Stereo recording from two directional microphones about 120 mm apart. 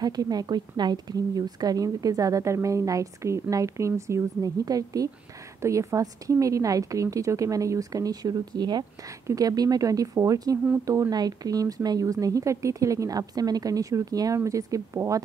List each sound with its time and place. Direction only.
0.0 s a woman's voice: 35° right (ahead or behind)